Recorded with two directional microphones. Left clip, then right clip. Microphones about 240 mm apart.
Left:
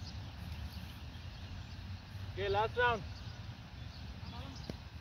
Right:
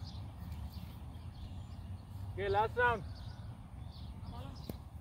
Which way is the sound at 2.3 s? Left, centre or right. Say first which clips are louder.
Right 1 dB; right.